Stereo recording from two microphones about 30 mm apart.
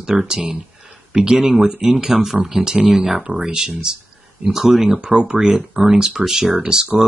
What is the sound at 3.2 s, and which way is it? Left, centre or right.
Speech, right.